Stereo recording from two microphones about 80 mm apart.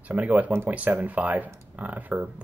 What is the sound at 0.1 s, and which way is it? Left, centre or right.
Speech, centre.